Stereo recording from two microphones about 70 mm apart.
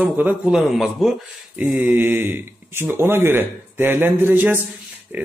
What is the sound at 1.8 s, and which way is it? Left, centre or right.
Speech, right.